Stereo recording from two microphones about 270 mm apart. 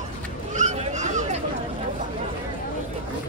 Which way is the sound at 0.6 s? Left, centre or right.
Right.